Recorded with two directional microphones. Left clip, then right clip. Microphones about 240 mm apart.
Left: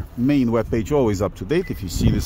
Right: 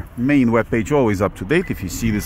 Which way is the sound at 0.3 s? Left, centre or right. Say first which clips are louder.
Right 4 dB; centre.